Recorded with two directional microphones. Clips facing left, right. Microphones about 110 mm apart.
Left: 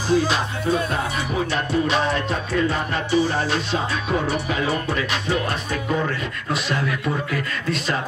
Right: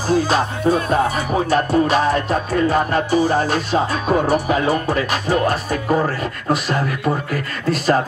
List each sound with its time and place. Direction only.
0.1 s music: 45° right (ahead or behind)